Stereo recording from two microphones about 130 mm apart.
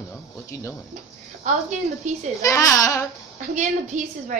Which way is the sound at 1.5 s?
70° right (ahead or behind).